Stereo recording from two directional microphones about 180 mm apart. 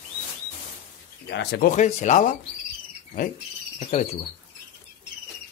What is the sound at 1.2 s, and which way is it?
Speech, 70° left (ahead or behind).